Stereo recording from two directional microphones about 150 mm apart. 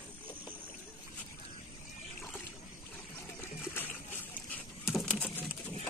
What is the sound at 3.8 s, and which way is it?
Boat, 15° left (ahead or behind).